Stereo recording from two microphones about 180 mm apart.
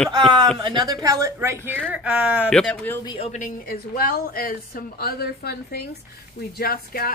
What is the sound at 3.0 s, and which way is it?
Speech, 25° left (ahead or behind).